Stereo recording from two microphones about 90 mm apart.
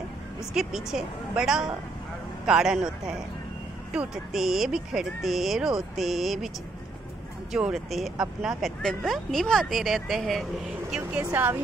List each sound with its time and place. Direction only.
0.6 s a man's voice: 5° right (ahead or behind)
7.5 s speech: 5° right (ahead or behind)
11.4 s a man's voice: 15° right (ahead or behind)